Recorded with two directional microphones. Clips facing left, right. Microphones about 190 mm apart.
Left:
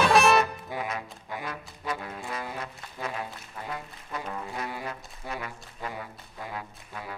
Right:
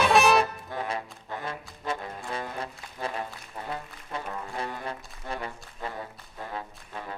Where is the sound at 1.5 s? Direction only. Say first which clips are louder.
Right 2 dB; 30° right (ahead or behind).